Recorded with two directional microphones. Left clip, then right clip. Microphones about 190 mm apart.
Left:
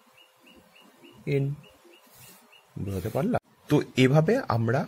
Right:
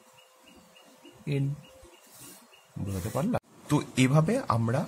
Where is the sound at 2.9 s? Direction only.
15° left (ahead or behind).